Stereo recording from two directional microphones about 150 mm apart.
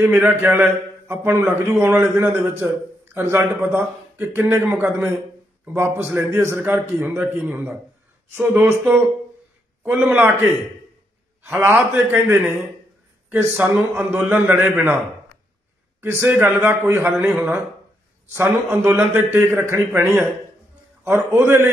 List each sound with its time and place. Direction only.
0.0 s a man's voice: 15° right (ahead or behind)
11.4 s a man's voice: 10° right (ahead or behind)
16.0 s a man's voice: 10° right (ahead or behind)
18.3 s a man's voice: 10° right (ahead or behind)